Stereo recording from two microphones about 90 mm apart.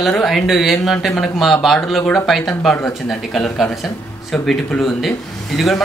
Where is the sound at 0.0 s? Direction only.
Centre (ahead or behind).